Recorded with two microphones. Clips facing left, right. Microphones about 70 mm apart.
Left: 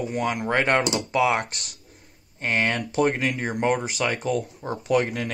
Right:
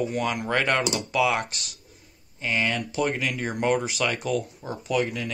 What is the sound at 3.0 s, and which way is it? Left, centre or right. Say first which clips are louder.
Speech: left 4 dB; left.